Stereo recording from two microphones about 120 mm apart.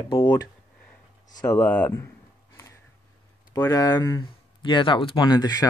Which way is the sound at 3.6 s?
25° left (ahead or behind).